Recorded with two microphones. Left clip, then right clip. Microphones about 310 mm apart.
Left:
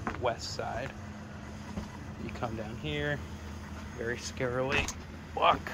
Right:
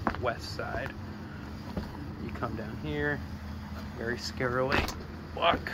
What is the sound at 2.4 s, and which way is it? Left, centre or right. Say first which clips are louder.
Speech: right 1 dB; centre.